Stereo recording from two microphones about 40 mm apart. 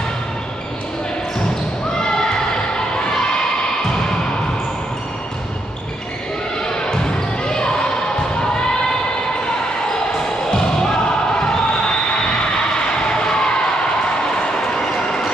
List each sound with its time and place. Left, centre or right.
2.0 s music: left
6.6 s basketball bounce: centre
10.5 s music: left
14.7 s a sound: centre